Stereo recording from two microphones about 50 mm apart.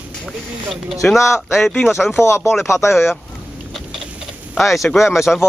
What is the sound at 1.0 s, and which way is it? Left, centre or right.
Speech, left.